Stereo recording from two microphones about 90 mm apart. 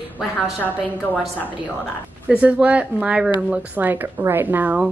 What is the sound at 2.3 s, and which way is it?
A woman's voice, 15° right (ahead or behind).